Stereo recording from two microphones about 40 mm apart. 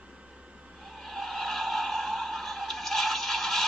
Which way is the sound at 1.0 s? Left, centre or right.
Centre.